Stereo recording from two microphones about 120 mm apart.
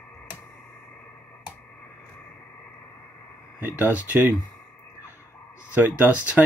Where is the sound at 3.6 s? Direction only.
15° right (ahead or behind).